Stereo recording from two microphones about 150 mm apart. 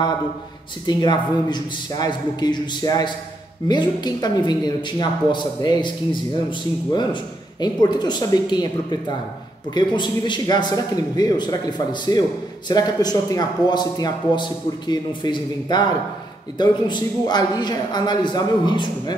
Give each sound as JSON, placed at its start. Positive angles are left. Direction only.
{"t": 0.8, "sound": "a man's voice", "side_deg": 30}
{"t": 9.8, "sound": "a man's voice", "side_deg": 30}